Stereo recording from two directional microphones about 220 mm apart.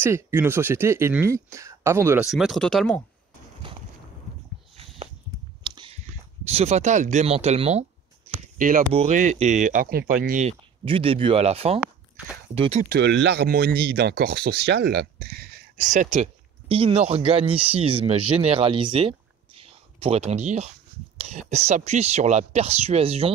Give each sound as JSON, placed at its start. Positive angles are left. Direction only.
{"t": 0.0, "sound": "speech", "side_deg": -10}
{"t": 4.7, "sound": "a sound", "side_deg": -25}
{"t": 6.4, "sound": "speech", "side_deg": -30}
{"t": 10.9, "sound": "speech", "side_deg": -25}
{"t": 12.9, "sound": "speech", "side_deg": -50}